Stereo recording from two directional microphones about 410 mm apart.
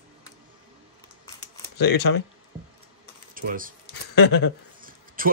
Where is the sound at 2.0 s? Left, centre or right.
Left.